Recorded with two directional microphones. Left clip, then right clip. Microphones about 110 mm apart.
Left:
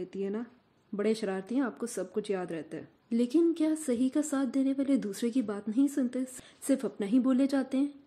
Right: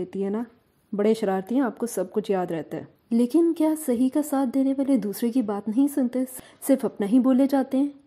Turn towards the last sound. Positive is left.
turn(degrees=-30)  # may be behind; listen again after turning